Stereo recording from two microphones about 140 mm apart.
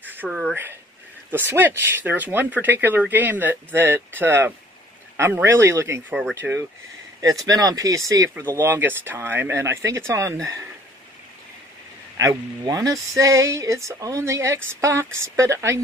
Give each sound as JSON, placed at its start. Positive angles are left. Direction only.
{"t": 0.1, "sound": "speech", "side_deg": -10}
{"t": 6.4, "sound": "speech", "side_deg": -10}
{"t": 7.4, "sound": "speech", "side_deg": -25}
{"t": 12.2, "sound": "speech", "side_deg": -25}